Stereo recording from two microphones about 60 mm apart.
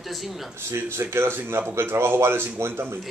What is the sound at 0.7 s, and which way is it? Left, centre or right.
Speech, right.